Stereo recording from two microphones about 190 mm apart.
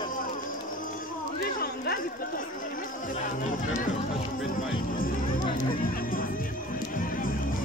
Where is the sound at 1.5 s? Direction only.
50° left (ahead or behind).